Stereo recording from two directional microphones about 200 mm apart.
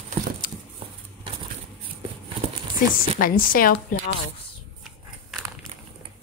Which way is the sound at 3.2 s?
45° left (ahead or behind).